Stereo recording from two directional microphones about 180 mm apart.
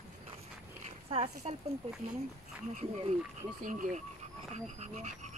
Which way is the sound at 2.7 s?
45° right (ahead or behind).